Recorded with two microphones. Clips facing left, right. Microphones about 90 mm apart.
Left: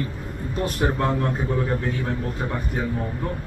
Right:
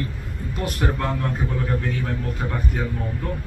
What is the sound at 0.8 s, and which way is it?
Speech, 20° left (ahead or behind).